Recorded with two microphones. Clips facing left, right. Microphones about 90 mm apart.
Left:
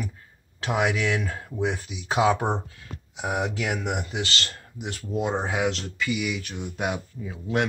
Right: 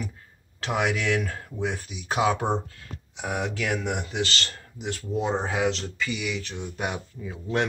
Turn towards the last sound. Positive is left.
turn(degrees=5)  # may be behind; listen again after turning